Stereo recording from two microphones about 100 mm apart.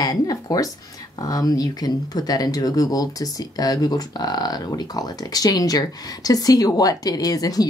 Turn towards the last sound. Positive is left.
turn(degrees=40)  # may be behind; listen again after turning